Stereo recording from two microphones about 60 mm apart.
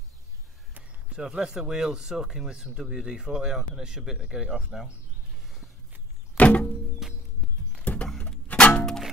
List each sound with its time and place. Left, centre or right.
0.7 s speech: centre
6.3 s music: left
7.0 s music: centre
7.8 s a sound: left
8.5 s music: left